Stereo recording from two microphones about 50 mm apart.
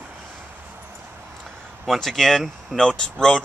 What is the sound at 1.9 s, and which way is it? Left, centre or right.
Speech, centre.